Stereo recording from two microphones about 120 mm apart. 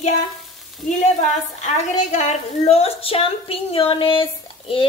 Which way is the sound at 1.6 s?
75° left (ahead or behind).